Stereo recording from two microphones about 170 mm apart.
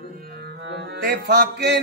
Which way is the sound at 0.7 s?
80° right.